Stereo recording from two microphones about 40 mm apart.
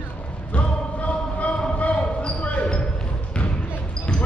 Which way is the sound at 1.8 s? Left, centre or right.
Left.